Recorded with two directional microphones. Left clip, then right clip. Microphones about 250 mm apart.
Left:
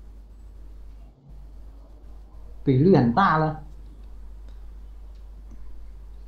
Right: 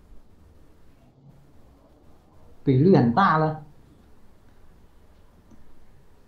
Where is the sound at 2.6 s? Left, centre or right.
Centre.